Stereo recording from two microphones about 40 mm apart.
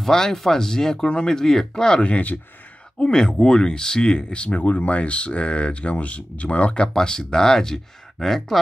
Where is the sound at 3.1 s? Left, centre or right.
Centre.